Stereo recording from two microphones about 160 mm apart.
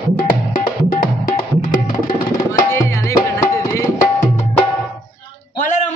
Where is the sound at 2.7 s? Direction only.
20° left (ahead or behind).